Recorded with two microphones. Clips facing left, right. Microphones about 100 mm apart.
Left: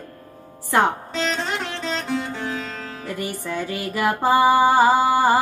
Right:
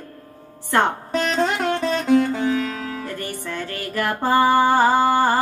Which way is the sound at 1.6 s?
50° right (ahead or behind).